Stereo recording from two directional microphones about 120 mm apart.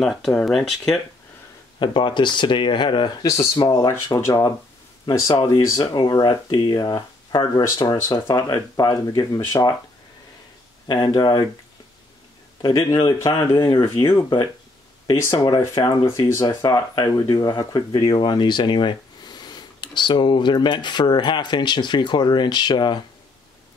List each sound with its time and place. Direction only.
0.0 s speech: centre (ahead or behind)
1.8 s speech: 40° left (ahead or behind)
5.6 s speech: 35° left (ahead or behind)
10.9 s speech: 35° left (ahead or behind)
12.6 s speech: 40° left (ahead or behind)